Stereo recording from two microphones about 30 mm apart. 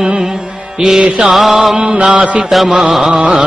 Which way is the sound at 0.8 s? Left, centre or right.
Centre.